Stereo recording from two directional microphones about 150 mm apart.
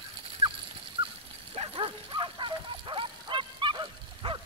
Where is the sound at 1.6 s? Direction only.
40° right (ahead or behind).